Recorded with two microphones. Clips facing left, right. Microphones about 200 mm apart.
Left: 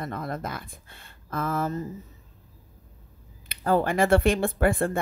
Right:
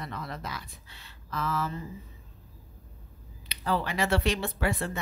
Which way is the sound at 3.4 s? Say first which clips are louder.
Left 7 dB; 50° left (ahead or behind).